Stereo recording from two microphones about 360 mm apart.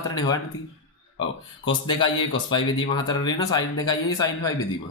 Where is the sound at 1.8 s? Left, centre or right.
Centre.